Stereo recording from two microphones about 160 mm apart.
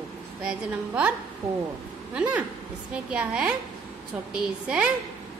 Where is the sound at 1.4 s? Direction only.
40° right (ahead or behind).